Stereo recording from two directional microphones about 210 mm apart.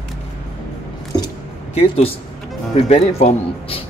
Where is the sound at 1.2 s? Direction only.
30° left (ahead or behind).